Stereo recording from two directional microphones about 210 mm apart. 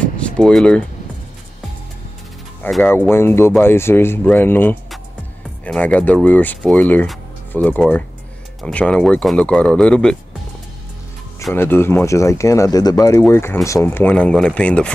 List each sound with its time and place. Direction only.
0.0 s a sound: 5° left (ahead or behind)
2.6 s speech: 10° left (ahead or behind)
11.5 s speech: 10° left (ahead or behind)